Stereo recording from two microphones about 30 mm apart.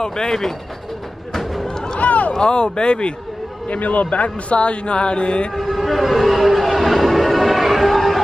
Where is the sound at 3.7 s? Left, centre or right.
Left.